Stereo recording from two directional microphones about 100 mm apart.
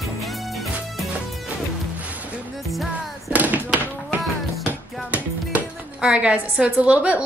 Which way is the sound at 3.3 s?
15° right (ahead or behind).